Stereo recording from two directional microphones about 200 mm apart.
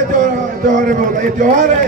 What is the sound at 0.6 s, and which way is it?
Speech, 40° right (ahead or behind).